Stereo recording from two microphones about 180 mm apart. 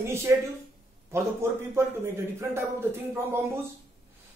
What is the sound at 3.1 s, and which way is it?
Speech, 10° right (ahead or behind).